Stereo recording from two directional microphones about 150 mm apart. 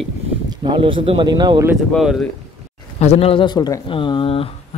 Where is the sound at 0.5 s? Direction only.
30° right (ahead or behind).